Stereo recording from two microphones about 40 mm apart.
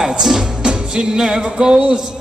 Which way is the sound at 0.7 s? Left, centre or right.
Centre.